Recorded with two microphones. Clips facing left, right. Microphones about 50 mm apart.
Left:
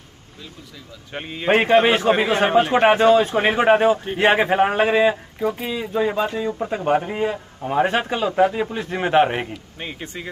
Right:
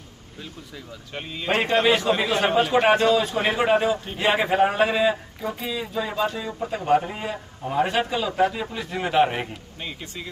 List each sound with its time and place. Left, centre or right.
1.1 s a man's voice: left
7.0 s a man's voice: centre
7.2 s a man's voice: left
8.3 s a man's voice: centre
8.7 s a man's voice: left